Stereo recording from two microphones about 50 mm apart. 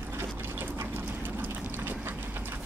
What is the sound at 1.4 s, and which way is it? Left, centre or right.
Boat, right.